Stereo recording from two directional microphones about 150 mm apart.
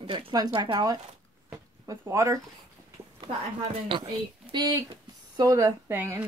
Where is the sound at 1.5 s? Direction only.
15° right (ahead or behind).